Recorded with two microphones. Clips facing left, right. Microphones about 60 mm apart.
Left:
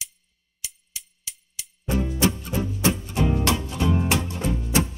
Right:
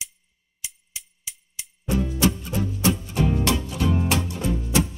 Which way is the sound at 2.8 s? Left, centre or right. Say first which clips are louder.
Right 1 dB; left.